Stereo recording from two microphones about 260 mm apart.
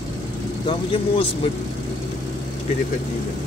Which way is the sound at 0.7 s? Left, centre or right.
Left.